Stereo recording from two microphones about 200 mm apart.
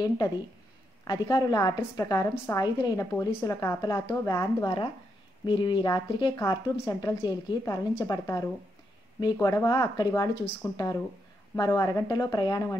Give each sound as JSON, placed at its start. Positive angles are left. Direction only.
{"t": 1.0, "sound": "a woman's voice", "side_deg": 20}